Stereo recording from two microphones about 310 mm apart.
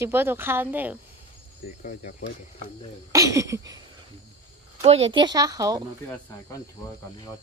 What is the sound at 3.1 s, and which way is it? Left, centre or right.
Speech, centre.